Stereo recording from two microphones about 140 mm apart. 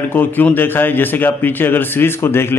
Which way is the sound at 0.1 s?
15° left (ahead or behind).